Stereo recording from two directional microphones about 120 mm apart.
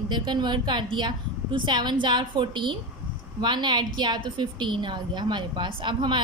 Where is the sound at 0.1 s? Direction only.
40° right (ahead or behind).